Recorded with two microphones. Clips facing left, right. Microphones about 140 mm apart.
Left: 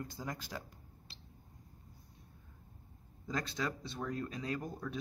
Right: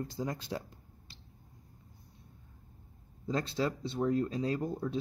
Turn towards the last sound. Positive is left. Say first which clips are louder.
# right 6 dB
turn(degrees=-30)  # may be behind; listen again after turning